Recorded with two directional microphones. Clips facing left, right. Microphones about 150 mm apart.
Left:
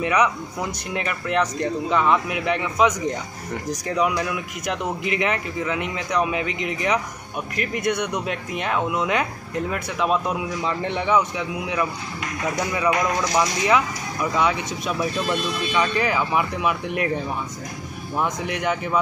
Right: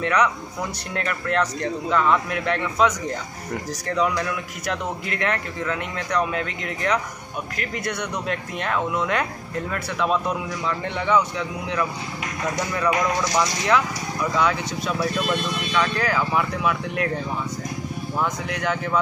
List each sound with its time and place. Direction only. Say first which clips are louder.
0.0 s a man's voice: left 1 dB; 10° left (ahead or behind)
8.3 s speech: left 1 dB; 10° left (ahead or behind)
10.6 s a man's voice: left 2 dB; 20° left (ahead or behind)
18.2 s a man's voice: left 2 dB; 20° left (ahead or behind)